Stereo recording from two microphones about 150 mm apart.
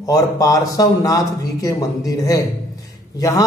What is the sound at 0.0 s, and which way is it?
A man's voice, 20° left (ahead or behind).